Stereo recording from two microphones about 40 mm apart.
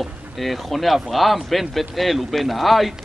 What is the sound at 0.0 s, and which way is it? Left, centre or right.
A man's voice, centre.